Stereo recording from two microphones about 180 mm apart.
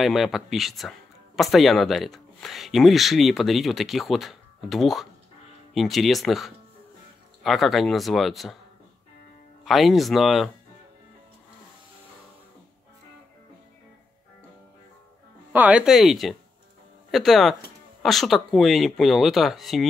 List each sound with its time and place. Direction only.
0.0 s speech: centre (ahead or behind)
9.7 s speech: centre (ahead or behind)
15.5 s speech: 10° right (ahead or behind)